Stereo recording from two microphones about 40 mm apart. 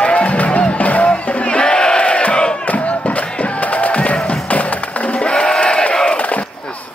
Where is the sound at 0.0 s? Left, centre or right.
Left.